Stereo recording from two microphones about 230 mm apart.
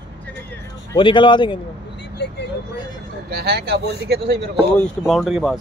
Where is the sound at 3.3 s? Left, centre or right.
Right.